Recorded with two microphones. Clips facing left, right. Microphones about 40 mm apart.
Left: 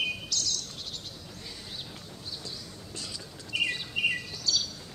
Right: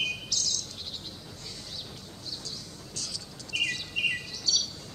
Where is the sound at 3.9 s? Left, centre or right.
Centre.